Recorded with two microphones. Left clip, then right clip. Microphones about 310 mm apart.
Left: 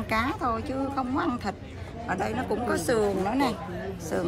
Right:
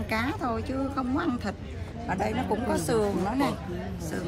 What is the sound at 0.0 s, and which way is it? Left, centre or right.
A woman's voice, centre.